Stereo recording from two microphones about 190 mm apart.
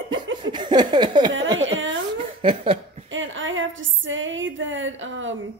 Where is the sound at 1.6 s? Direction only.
80° right.